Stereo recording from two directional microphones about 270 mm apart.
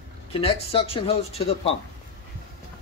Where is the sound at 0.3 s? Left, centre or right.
Left.